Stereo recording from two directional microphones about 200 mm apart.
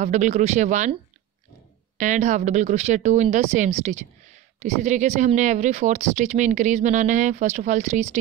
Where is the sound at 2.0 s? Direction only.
40° right (ahead or behind).